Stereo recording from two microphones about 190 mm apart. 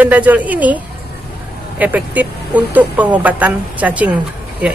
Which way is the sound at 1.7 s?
10° right (ahead or behind).